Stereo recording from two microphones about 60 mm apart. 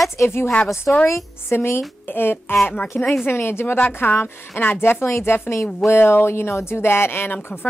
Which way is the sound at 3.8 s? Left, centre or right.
Left.